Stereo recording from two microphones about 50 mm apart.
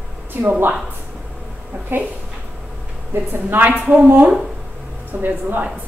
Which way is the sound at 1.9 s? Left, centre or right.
Right.